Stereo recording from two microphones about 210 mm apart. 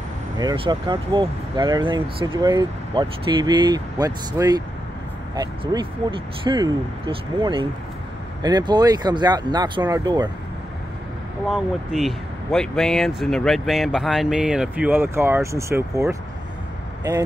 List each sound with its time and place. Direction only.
0.4 s speech: 20° right (ahead or behind)
11.4 s speech: centre (ahead or behind)